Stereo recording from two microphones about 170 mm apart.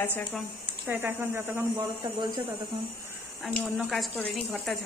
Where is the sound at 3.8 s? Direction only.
Centre (ahead or behind).